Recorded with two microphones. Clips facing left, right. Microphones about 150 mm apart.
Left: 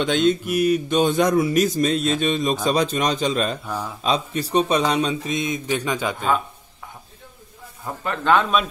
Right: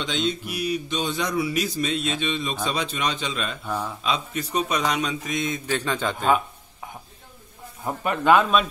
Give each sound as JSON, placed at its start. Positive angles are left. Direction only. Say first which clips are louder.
{"t": 0.0, "sound": "speech", "louder": "left 8 dB", "side_deg": 55}
{"t": 3.6, "sound": "speech", "louder": "even", "side_deg": 10}
{"t": 4.0, "sound": "speech", "louder": "left 4 dB", "side_deg": 35}
{"t": 6.1, "sound": "speech", "louder": "right 3 dB", "side_deg": -10}
{"t": 7.8, "sound": "speech", "louder": "right 2 dB", "side_deg": -15}